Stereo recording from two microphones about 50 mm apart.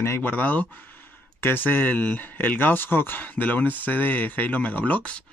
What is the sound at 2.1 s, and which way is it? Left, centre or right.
Speech, left.